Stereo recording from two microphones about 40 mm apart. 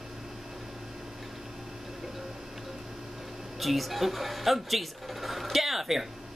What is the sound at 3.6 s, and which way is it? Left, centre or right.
Speech, centre.